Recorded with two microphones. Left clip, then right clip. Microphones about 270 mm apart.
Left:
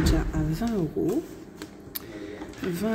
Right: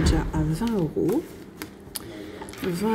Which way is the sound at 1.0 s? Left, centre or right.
Centre.